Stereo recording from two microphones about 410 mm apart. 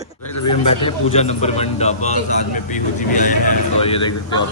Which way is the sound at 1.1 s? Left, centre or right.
Centre.